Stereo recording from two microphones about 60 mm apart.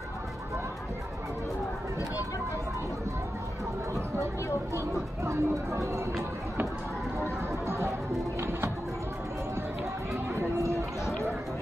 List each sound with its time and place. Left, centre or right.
4.7 s chatter: right
7.2 s music: right